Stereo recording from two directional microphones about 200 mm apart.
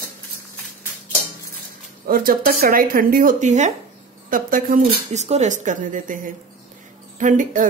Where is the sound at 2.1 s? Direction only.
45° right (ahead or behind).